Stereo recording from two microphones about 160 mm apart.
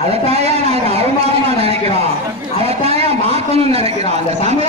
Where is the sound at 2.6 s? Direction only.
40° right (ahead or behind).